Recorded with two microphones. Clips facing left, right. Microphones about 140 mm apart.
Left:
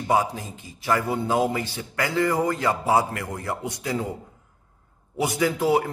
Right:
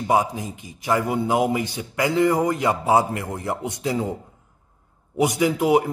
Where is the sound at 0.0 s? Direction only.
20° right (ahead or behind).